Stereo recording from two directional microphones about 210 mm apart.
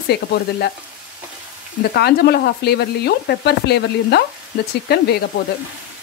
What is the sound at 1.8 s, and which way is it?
Speech, 50° left (ahead or behind).